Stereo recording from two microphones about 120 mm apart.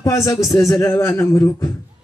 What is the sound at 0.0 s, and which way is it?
A man's voice, 25° left (ahead or behind).